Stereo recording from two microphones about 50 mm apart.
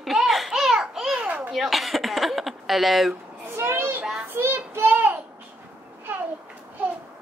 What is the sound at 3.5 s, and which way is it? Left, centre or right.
Children playing, right.